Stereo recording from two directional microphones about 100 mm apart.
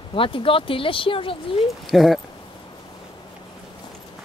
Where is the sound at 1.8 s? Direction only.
Centre (ahead or behind).